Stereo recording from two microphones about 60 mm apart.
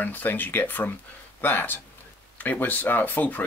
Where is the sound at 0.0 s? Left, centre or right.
Left.